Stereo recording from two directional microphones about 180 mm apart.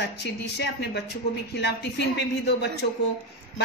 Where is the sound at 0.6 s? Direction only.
70° left (ahead or behind).